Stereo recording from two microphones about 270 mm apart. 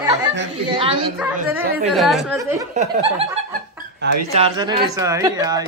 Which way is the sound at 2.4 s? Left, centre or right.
Centre.